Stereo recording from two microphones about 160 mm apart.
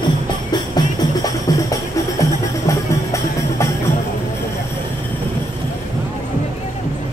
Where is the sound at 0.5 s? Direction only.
25° left (ahead or behind).